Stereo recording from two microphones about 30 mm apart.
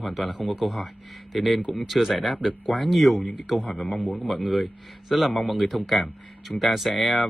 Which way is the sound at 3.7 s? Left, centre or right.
Left.